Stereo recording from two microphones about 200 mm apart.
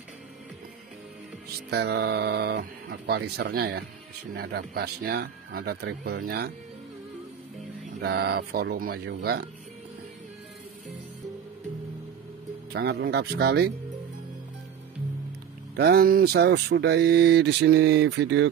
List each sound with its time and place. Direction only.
1.7 s speech: 55° right (ahead or behind)
8.0 s speech: 55° right (ahead or behind)
12.7 s speech: 55° right (ahead or behind)
15.7 s speech: 50° right (ahead or behind)